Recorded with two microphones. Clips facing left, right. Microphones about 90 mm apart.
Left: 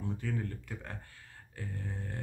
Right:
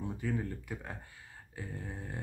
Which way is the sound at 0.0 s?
10° right (ahead or behind).